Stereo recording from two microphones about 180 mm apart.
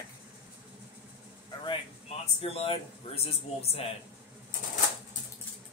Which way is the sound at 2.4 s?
35° left (ahead or behind).